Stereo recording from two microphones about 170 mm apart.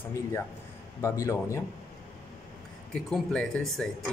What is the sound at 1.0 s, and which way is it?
Speech, 15° left (ahead or behind).